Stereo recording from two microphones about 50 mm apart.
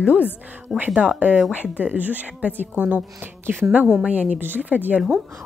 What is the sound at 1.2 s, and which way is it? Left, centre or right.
A woman's voice, right.